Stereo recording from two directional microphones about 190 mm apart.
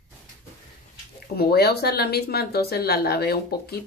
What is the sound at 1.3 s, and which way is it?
Speech, 55° left (ahead or behind).